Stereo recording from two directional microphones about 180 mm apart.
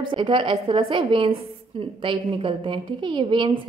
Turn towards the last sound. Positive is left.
turn(degrees=-25)  # may be behind; listen again after turning